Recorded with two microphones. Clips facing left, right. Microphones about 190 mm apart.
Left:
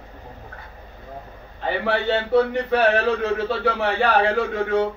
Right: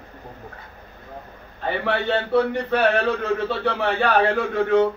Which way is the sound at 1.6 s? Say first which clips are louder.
Left 1 dB; 15° left (ahead or behind).